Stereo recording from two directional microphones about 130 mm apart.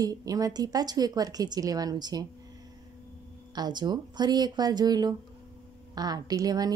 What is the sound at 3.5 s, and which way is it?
A woman's voice, 30° right (ahead or behind).